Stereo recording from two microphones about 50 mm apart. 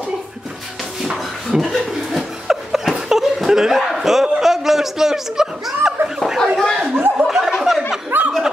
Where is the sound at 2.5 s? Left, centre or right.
Centre.